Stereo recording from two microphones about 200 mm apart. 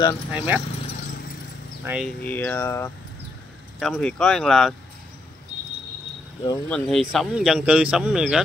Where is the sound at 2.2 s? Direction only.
10° left (ahead or behind).